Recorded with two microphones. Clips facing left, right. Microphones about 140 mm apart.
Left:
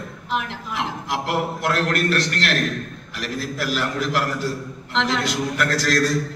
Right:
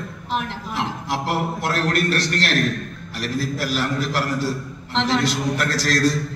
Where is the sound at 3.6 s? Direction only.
40° right (ahead or behind).